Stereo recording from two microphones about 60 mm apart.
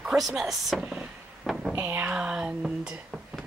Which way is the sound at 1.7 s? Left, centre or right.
Right.